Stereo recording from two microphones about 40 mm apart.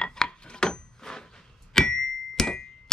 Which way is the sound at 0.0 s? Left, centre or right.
Centre.